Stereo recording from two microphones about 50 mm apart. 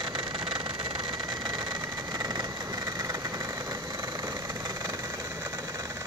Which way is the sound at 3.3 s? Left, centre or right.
Right.